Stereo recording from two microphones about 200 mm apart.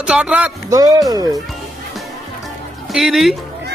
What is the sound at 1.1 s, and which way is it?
Speech, 20° right (ahead or behind).